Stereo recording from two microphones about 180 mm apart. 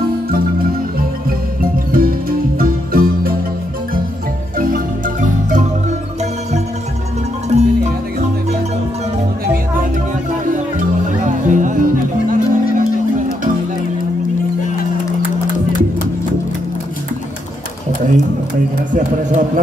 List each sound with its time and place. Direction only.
1.6 s music: 55° right (ahead or behind)
4.6 s marimba: 50° right (ahead or behind)
7.4 s music: 40° right (ahead or behind)
10.5 s music: 45° right (ahead or behind)
18.9 s a sound: 45° right (ahead or behind)